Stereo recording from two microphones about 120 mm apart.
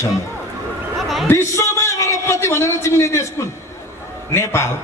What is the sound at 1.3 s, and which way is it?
A man's voice, 20° left (ahead or behind).